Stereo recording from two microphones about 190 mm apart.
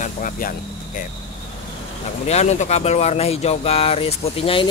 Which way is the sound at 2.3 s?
35° left (ahead or behind).